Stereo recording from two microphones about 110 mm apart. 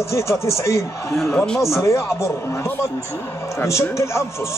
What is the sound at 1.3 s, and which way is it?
Speech, 10° left (ahead or behind).